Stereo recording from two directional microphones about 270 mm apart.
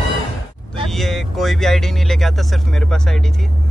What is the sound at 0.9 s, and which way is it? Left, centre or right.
Speech, centre.